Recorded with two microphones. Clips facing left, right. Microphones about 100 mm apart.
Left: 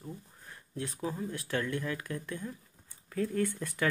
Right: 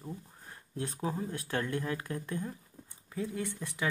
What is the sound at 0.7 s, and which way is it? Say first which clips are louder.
Speech: right 1 dB; 35° right (ahead or behind).